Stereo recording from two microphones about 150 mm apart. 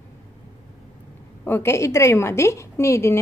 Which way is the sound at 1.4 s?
15° left (ahead or behind).